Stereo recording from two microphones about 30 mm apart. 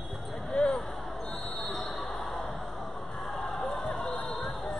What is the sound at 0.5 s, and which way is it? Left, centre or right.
Basketball bounce, left.